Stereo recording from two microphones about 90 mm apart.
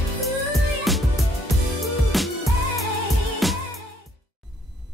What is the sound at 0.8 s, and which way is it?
Music, centre (ahead or behind).